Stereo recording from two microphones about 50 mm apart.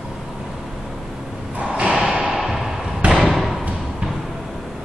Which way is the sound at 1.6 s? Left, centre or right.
Right.